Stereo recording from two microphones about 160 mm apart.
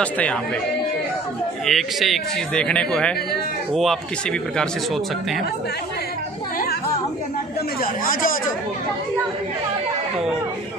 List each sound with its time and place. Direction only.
0.0 s speech: 10° left (ahead or behind)
1.7 s speech: centre (ahead or behind)
7.8 s a man's voice: 60° left (ahead or behind)